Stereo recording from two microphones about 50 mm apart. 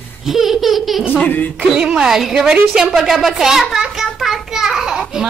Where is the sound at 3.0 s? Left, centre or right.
Centre.